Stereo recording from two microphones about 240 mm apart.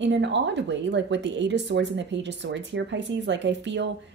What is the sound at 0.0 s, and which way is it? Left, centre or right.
Speech, right.